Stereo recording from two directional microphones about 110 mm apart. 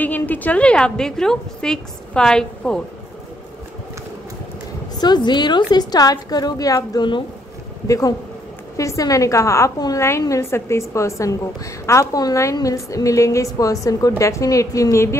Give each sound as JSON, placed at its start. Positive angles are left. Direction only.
{"t": 0.0, "sound": "a woman's voice", "side_deg": 15}
{"t": 5.0, "sound": "a woman's voice", "side_deg": 40}